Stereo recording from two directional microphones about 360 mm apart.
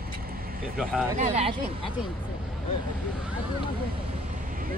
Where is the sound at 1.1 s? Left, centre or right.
Centre.